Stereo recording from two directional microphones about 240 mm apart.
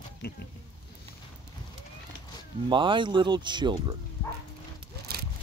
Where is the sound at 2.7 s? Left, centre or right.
Centre.